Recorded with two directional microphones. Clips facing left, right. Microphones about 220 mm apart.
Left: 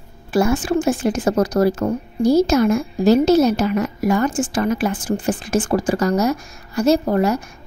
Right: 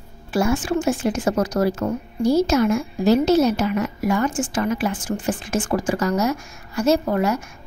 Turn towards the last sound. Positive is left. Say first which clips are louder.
# left 3 dB
turn(degrees=35)  # may be behind; listen again after turning